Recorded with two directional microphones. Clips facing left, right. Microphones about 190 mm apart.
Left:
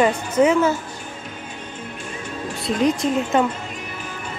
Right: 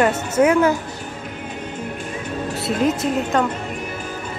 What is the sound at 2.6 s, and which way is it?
Speech, 5° right (ahead or behind).